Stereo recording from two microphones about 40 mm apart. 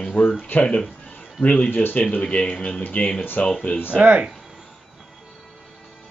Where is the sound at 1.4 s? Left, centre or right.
Left.